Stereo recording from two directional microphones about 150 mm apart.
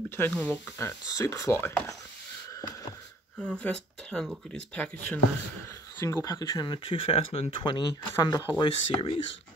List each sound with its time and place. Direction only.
0.4 s speech: 10° left (ahead or behind)
3.3 s speech: 10° left (ahead or behind); by 9.2 s 35° left (ahead or behind)